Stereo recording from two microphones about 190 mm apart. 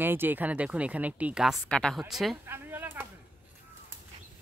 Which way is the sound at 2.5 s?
10° right (ahead or behind).